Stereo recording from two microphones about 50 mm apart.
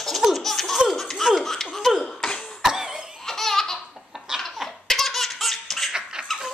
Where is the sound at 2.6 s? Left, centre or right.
Centre.